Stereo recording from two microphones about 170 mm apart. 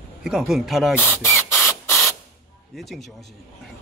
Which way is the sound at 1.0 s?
10° left (ahead or behind).